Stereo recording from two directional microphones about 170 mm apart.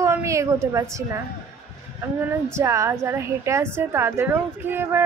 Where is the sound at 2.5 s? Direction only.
20° right (ahead or behind).